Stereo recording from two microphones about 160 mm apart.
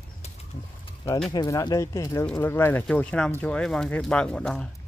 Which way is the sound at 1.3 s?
25° left (ahead or behind).